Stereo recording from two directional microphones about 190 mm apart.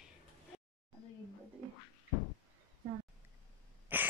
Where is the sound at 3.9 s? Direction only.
10° right (ahead or behind).